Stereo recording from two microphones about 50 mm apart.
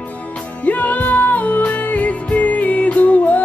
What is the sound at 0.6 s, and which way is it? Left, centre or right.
Music, left.